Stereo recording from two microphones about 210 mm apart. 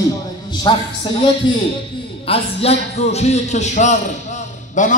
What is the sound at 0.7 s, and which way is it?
A man's voice, 20° left (ahead or behind).